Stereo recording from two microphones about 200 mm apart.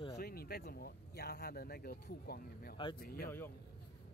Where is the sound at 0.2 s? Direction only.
50° left (ahead or behind).